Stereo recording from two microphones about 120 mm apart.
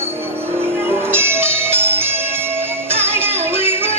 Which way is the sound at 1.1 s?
20° right (ahead or behind).